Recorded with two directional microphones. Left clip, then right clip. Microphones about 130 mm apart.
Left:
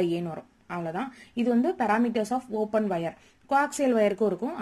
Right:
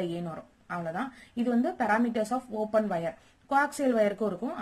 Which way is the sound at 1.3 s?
20° left (ahead or behind).